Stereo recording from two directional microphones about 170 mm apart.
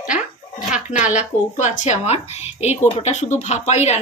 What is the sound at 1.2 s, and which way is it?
Speech, 45° left (ahead or behind).